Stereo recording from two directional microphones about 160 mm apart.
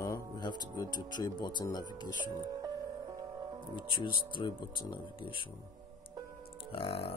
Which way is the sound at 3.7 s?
30° left (ahead or behind).